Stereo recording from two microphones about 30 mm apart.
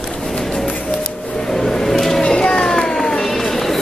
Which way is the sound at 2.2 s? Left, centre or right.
Left.